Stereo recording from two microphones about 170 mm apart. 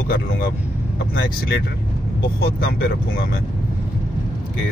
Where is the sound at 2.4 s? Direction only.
65° left (ahead or behind).